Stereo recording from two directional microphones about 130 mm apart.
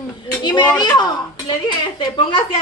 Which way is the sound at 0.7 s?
35° left (ahead or behind).